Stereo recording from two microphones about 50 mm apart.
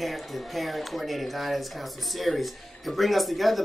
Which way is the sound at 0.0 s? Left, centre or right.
Centre.